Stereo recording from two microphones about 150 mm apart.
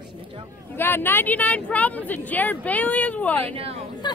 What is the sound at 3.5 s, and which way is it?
Speech, 40° right (ahead or behind).